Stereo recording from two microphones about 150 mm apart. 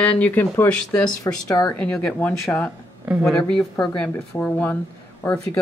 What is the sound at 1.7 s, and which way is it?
Speech, 5° left (ahead or behind).